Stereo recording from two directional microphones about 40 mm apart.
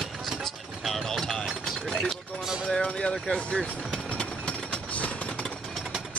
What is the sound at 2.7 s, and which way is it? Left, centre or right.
Speech, left.